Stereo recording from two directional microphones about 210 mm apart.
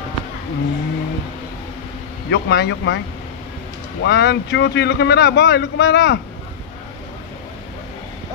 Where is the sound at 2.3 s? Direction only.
55° left (ahead or behind).